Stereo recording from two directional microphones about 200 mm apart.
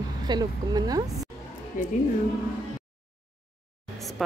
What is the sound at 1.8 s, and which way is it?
Speech, 45° left (ahead or behind).